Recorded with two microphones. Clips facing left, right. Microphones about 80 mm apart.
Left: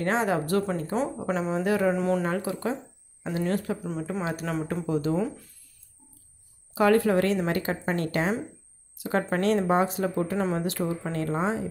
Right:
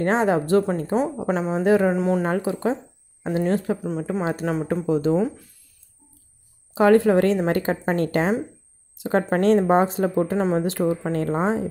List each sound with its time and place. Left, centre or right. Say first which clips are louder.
0.0 s speech: right 5 dB; right
2.2 s speech: right 5 dB; right
6.7 s speech: right 5 dB; right